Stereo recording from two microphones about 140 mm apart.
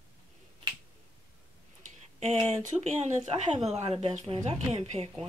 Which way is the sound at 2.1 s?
45° right (ahead or behind).